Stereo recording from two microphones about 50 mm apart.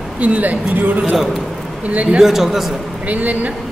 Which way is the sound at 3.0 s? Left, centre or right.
Right.